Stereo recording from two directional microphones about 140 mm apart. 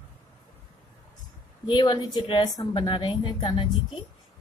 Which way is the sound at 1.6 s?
35° left (ahead or behind).